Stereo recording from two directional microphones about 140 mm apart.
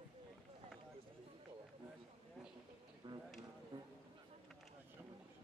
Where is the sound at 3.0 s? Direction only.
35° right (ahead or behind).